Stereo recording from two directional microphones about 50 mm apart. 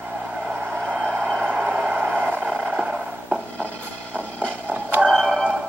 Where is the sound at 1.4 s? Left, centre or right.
Centre.